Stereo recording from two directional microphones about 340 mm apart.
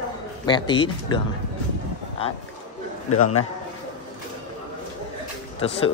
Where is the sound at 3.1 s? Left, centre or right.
Left.